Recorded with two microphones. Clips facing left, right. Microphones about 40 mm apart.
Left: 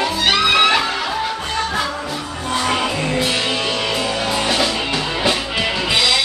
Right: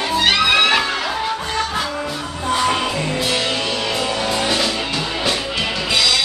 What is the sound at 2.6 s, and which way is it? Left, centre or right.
Music, centre.